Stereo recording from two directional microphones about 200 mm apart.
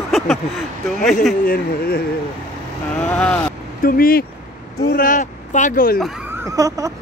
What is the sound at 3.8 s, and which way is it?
Speech, 45° left (ahead or behind).